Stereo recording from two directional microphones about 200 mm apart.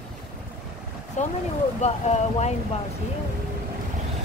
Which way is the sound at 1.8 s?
30° left (ahead or behind).